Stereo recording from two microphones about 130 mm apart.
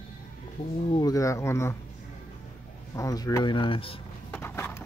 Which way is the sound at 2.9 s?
25° left (ahead or behind).